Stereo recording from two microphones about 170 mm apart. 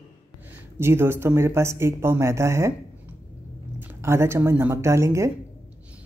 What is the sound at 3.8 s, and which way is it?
Speech, 15° right (ahead or behind).